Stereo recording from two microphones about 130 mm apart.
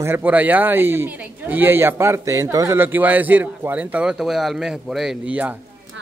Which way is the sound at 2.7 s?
15° right (ahead or behind).